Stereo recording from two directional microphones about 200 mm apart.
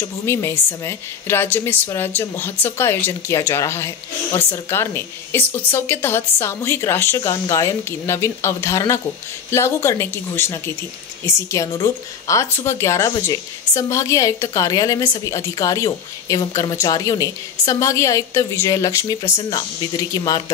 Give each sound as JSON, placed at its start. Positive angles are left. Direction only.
{"t": 0.3, "sound": "a woman's voice", "side_deg": 15}